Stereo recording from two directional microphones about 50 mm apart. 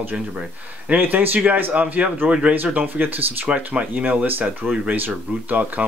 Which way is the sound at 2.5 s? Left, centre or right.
Right.